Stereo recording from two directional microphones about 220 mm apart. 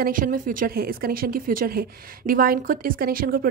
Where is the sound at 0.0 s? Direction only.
40° right (ahead or behind).